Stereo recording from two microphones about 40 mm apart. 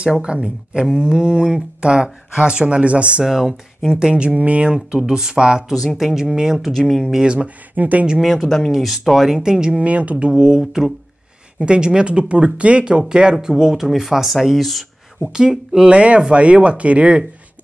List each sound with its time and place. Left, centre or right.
0.2 s speech: right
2.6 s speech: right
3.3 s speech: centre
3.9 s speech: right
5.9 s speech: centre
6.7 s speech: centre
7.4 s speech: right
8.2 s speech: centre
8.5 s speech: centre
8.7 s speech: centre
9.8 s speech: right
10.2 s speech: right; by 14.9 s centre
15.3 s speech: centre
15.8 s speech: right